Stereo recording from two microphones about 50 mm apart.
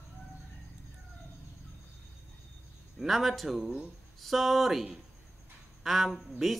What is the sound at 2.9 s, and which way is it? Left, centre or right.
Speech, centre.